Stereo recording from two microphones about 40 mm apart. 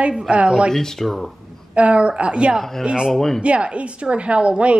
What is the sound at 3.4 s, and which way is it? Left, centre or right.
A woman's voice, right.